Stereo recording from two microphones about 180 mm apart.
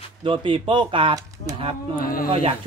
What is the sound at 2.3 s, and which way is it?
Speech, 35° right (ahead or behind).